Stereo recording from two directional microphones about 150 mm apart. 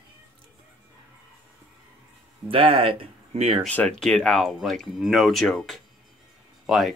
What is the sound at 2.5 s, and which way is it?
Speech, 35° right (ahead or behind).